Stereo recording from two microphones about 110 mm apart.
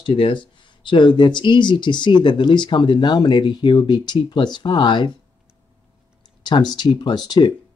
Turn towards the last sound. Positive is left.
turn(degrees=40)  # may be behind; listen again after turning